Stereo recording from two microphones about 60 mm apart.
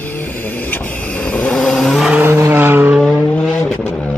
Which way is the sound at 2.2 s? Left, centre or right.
Right.